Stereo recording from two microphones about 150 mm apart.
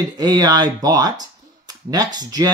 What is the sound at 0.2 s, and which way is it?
Speech, 25° right (ahead or behind).